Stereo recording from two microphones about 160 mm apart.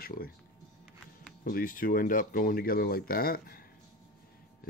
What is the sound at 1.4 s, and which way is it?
Speech, 60° left (ahead or behind).